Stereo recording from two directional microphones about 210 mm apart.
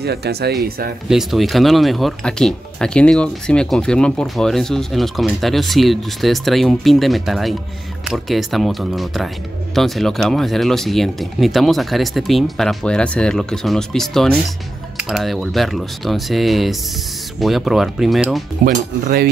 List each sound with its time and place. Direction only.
0.0 s speech: 50° right (ahead or behind)
1.0 s speech: centre (ahead or behind)
18.6 s cutlery: 40° right (ahead or behind)